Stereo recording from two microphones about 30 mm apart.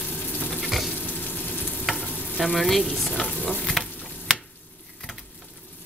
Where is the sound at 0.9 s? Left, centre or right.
Left.